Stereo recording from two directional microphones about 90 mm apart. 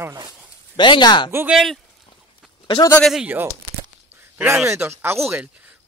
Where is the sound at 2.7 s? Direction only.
75° left (ahead or behind).